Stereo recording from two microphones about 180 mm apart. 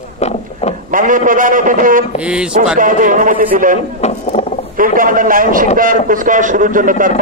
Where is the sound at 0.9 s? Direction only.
50° right (ahead or behind).